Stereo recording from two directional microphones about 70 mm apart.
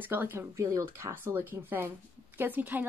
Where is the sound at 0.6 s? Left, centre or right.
Right.